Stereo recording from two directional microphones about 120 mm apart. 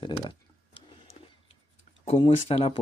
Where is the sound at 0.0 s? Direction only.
40° left (ahead or behind).